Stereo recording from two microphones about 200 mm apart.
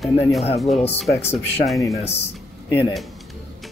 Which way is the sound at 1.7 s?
15° left (ahead or behind).